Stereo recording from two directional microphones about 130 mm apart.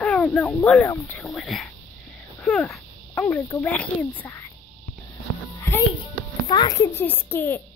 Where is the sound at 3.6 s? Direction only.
10° left (ahead or behind).